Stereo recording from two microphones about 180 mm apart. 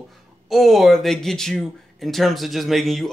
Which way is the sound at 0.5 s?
Centre (ahead or behind).